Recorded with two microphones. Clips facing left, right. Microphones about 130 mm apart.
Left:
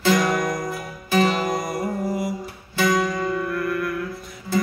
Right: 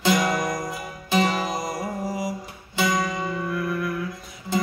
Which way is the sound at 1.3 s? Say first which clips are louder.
Left 3 dB; centre (ahead or behind).